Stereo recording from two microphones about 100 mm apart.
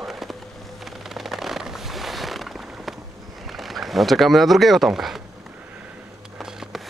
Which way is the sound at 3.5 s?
Centre (ahead or behind).